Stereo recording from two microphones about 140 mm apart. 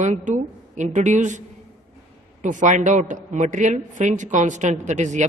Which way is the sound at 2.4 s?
65° right (ahead or behind).